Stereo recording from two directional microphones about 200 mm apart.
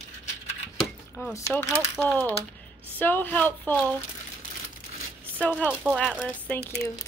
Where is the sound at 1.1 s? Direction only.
15° left (ahead or behind).